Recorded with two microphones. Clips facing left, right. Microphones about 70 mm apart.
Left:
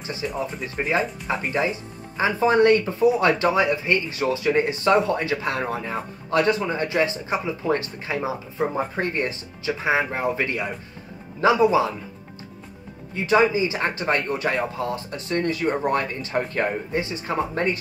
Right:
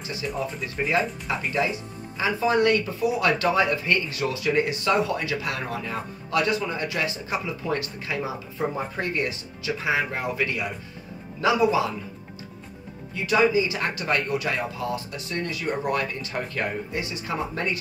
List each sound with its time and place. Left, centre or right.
0.0 s speech: left
13.1 s speech: left